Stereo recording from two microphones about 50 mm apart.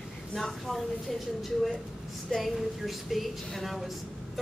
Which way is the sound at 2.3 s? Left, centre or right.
Centre.